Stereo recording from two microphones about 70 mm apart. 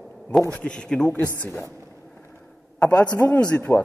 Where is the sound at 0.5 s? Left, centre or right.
Centre.